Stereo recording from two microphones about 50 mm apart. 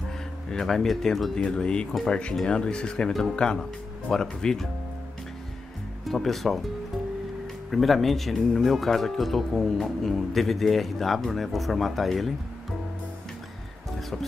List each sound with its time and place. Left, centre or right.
0.5 s speech: centre
1.4 s speech: centre
3.1 s speech: centre
3.3 s speech: centre
6.0 s speech: centre
7.7 s speech: centre